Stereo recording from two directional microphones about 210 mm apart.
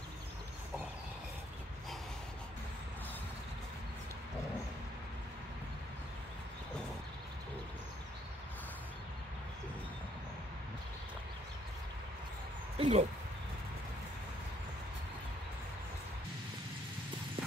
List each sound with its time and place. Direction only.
12.7 s speech: 25° right (ahead or behind)